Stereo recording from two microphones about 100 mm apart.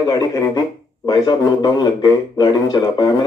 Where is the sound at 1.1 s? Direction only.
40° left (ahead or behind).